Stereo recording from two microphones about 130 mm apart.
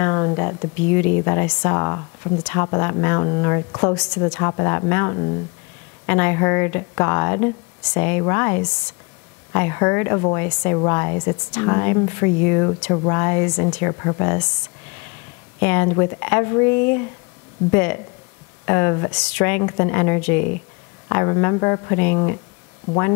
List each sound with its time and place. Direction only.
0.0 s speech: 25° left (ahead or behind)
0.8 s speech: 15° left (ahead or behind)
5.1 s speech: 35° left (ahead or behind)
6.0 s speech: 15° left (ahead or behind)
15.6 s a woman's voice: 15° left (ahead or behind)